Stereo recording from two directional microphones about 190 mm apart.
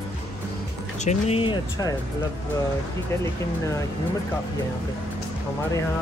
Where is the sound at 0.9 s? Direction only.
35° left (ahead or behind); by 1.9 s 20° left (ahead or behind).